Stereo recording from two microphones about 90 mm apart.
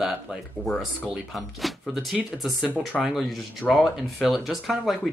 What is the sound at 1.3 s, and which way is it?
Speech, centre (ahead or behind).